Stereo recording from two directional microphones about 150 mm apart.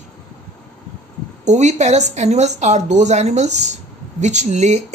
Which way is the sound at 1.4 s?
50° right (ahead or behind).